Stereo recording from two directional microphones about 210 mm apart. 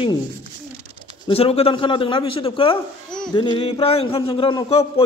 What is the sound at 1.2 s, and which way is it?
Speech, 25° left (ahead or behind).